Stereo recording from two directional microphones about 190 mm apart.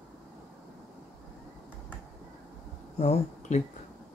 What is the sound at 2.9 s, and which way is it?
Speech, 35° left (ahead or behind).